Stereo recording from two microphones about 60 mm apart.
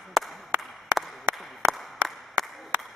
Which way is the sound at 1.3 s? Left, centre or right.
Right.